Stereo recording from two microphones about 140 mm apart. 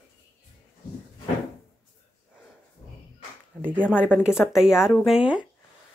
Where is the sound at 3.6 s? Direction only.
10° right (ahead or behind).